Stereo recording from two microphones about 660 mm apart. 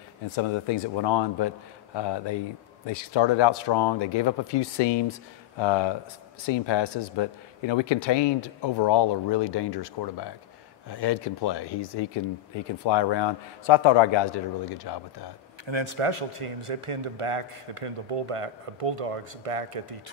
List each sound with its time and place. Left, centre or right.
0.4 s speech: left
15.6 s speech: right